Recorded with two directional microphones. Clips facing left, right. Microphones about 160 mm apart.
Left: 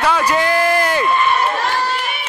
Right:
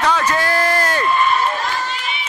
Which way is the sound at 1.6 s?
65° left (ahead or behind).